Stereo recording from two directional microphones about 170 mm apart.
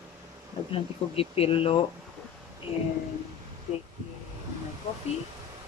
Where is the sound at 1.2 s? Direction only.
35° left (ahead or behind).